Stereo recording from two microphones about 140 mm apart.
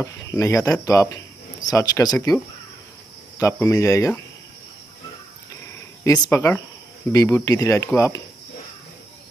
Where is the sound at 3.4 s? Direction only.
20° left (ahead or behind).